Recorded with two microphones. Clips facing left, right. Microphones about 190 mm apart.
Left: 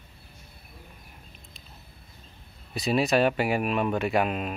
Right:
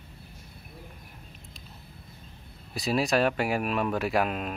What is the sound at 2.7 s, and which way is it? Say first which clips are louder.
Speech: left 2 dB; centre (ahead or behind).